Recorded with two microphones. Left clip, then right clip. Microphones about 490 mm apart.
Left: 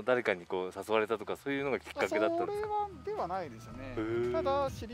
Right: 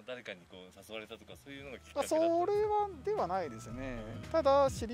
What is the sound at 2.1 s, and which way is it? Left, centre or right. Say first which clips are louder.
Speech: right 2 dB; right.